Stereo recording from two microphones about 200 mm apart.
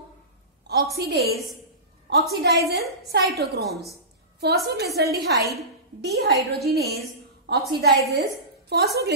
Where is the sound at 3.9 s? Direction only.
55° right (ahead or behind).